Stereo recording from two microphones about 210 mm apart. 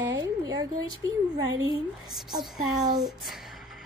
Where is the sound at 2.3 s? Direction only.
20° right (ahead or behind).